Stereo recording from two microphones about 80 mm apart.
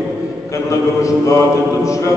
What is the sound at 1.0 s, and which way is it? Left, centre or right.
Speech, left.